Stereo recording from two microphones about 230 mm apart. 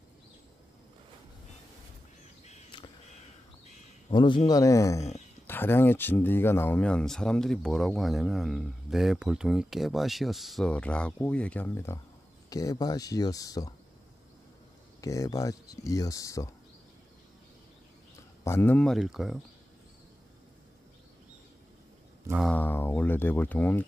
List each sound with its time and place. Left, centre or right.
2.4 s a sound: left
3.6 s speech: centre
15.0 s speech: centre
18.4 s speech: centre
22.3 s speech: centre